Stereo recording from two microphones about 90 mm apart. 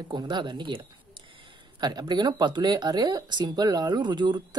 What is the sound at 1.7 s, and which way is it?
Speech, 50° right (ahead or behind).